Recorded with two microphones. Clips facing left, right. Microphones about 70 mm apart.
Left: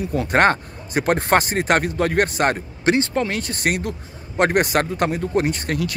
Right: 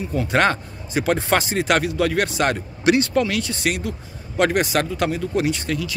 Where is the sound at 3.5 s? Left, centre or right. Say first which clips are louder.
Left 1 dB; left.